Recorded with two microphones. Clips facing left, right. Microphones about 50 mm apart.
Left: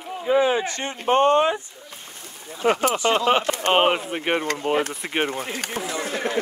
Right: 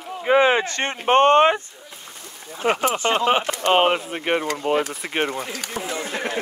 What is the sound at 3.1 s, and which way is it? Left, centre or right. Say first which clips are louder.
Speech: right 1 dB; centre.